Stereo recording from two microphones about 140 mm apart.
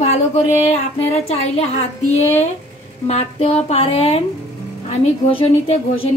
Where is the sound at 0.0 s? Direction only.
50° left (ahead or behind).